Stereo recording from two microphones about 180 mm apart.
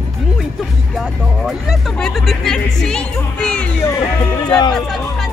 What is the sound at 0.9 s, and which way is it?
Speech, centre (ahead or behind).